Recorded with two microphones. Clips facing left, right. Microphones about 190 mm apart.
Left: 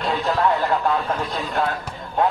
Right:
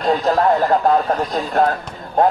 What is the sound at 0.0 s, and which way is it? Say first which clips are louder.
A man's voice: right 5 dB; 40° right (ahead or behind).